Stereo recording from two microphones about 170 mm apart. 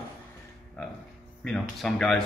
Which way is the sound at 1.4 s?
Centre (ahead or behind).